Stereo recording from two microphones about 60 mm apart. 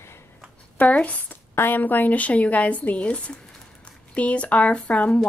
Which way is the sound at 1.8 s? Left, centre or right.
Left.